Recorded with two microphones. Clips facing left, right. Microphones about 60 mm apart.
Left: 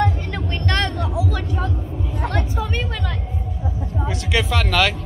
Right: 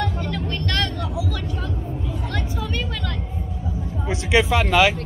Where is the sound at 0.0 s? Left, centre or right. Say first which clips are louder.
Left 3 dB; left.